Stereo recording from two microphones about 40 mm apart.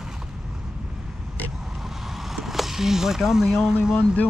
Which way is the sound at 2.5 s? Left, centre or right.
Centre.